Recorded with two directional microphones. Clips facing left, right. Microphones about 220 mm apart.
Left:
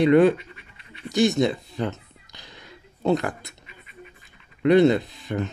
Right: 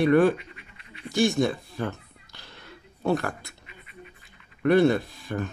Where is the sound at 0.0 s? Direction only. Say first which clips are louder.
Left 3 dB; 20° left (ahead or behind).